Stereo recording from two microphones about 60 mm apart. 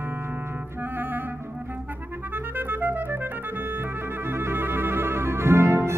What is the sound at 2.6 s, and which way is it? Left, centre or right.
Clarinet, right.